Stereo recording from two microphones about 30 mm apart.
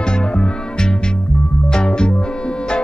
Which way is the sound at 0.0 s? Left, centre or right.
Left.